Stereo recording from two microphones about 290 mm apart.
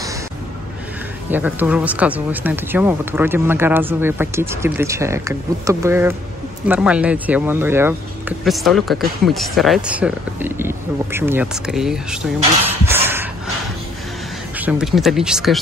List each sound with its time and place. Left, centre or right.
1.3 s speech: centre
12.8 s dog: centre
14.6 s speech: centre